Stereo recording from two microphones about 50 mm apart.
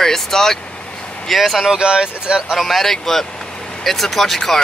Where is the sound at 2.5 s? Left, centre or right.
Centre.